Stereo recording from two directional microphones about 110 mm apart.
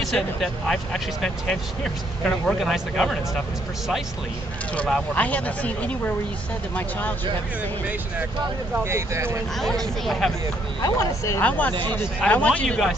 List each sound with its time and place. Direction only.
0.0 s speech: 5° left (ahead or behind)
4.7 s speech: 10° left (ahead or behind)
8.7 s speech: 25° right (ahead or behind)
9.6 s speech: 5° left (ahead or behind)
10.8 s speech: 30° left (ahead or behind)
11.4 s speech: 15° left (ahead or behind)